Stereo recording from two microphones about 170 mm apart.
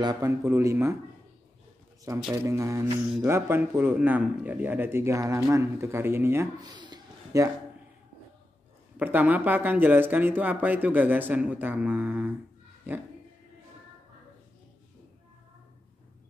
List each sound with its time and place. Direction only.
0.0 s speech: 25° right (ahead or behind)
2.3 s speech: 15° right (ahead or behind)
6.6 s a sound: 25° right (ahead or behind)
8.9 s speech: 10° right (ahead or behind)